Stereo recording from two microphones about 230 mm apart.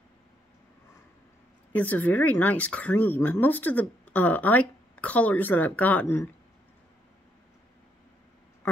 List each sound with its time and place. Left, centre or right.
1.7 s speech: centre